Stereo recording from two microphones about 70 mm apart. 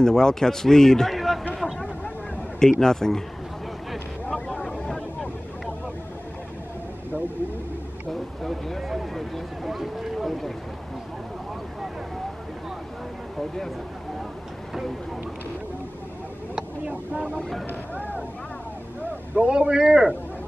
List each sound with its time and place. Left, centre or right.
0.0 s a man's voice: centre
1.5 s a sound: centre
2.6 s a man's voice: centre
4.5 s vehicle: centre
8.1 s a sound: centre
16.5 s vehicle: centre
17.4 s speech: centre
19.3 s a man's voice: centre